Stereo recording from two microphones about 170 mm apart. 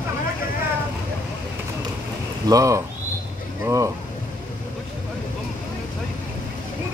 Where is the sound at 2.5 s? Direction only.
20° right (ahead or behind).